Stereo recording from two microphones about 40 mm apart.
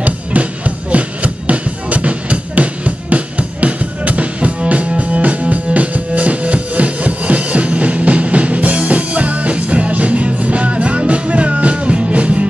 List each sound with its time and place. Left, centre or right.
0.0 s music: right